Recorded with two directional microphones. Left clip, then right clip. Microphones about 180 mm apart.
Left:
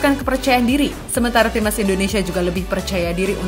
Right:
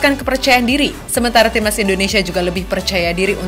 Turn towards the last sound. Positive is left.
turn(degrees=15)  # may be behind; listen again after turning